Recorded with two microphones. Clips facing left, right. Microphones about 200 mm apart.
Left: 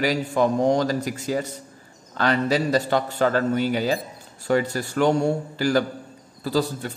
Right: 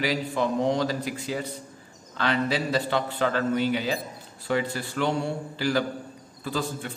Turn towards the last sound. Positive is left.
turn(degrees=40)  # may be behind; listen again after turning